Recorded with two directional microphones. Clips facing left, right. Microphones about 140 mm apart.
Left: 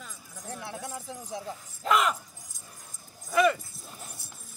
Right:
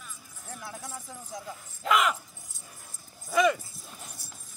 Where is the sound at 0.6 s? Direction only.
20° left (ahead or behind).